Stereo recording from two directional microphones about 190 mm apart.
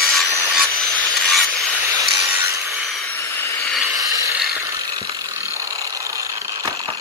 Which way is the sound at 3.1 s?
10° left (ahead or behind).